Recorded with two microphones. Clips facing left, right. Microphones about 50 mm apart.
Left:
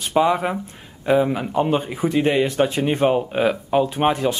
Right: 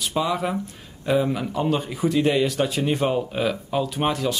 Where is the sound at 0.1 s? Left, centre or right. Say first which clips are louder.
Left 7 dB; left.